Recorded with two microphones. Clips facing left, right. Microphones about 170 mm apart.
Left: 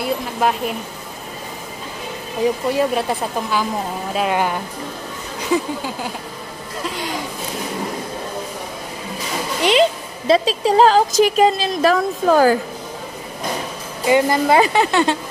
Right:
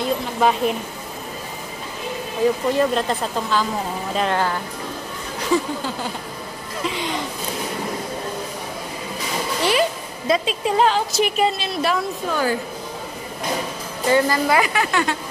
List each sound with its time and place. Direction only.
0.0 s speech: 5° left (ahead or behind)
2.7 s a woman's voice: 10° left (ahead or behind)
6.8 s speech: centre (ahead or behind)
9.6 s a woman's voice: 25° left (ahead or behind); by 12.5 s 45° left (ahead or behind)
14.0 s a woman's voice: 20° left (ahead or behind)